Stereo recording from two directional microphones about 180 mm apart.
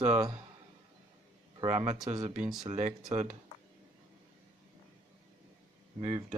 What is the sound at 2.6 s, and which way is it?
Speech, 40° right (ahead or behind).